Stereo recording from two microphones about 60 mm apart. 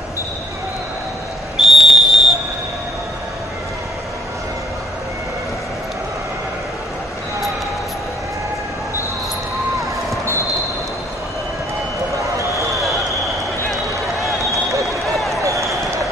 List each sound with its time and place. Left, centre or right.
1.6 s whistle: centre
12.2 s a sound: right
14.9 s run: centre
15.4 s basketball bounce: right